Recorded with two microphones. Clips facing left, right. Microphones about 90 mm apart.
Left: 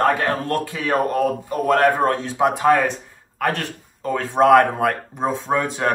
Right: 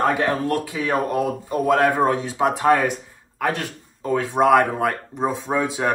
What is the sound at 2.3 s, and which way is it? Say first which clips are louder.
Speech: left 3 dB; centre (ahead or behind).